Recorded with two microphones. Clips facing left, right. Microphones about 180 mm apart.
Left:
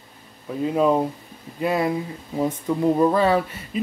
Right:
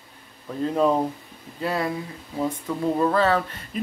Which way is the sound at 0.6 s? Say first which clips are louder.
Left 2 dB; 10° left (ahead or behind).